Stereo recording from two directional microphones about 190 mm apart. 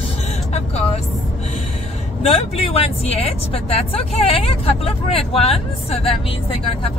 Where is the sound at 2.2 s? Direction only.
30° left (ahead or behind).